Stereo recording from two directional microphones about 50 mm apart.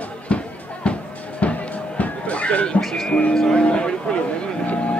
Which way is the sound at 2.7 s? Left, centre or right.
Centre.